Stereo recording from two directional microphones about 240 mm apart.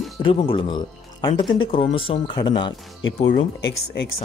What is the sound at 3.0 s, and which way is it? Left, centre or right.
Speech, left.